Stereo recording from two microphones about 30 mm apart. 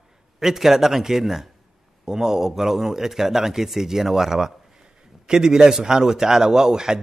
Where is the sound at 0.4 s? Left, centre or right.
Centre.